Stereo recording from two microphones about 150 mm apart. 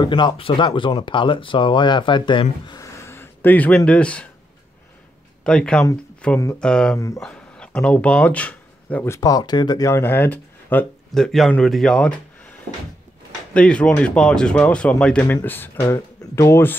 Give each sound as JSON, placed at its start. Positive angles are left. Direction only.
{"t": 0.0, "sound": "speech", "side_deg": 35}
{"t": 5.4, "sound": "speech", "side_deg": 5}
{"t": 13.5, "sound": "speech", "side_deg": 5}